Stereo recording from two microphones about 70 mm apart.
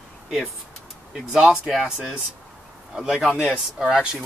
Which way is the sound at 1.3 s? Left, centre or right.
Centre.